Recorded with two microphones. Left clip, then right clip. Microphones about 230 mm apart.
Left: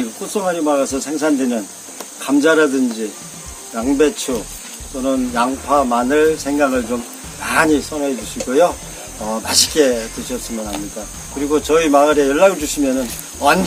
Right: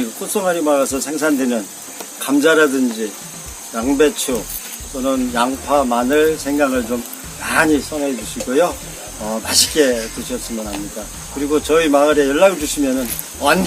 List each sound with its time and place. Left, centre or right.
0.3 s speech: centre
11.5 s speech: centre